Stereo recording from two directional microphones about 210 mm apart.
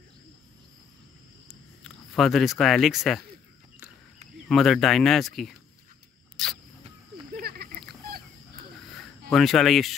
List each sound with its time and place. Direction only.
1.5 s speech: centre (ahead or behind)
4.5 s speech: centre (ahead or behind)
6.3 s rodents: centre (ahead or behind)
7.3 s a sound: 45° right (ahead or behind)
9.3 s speech: centre (ahead or behind)